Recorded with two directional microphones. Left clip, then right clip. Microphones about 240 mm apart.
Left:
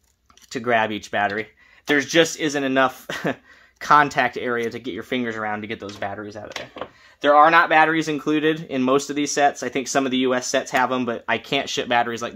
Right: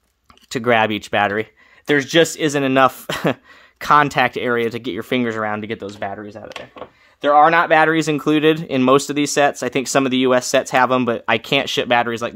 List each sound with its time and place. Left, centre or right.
0.5 s speech: right
7.2 s speech: right